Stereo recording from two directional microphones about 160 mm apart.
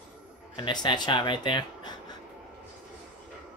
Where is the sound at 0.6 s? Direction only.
30° left (ahead or behind).